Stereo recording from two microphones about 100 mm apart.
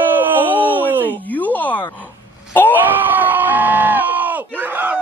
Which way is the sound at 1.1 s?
15° left (ahead or behind).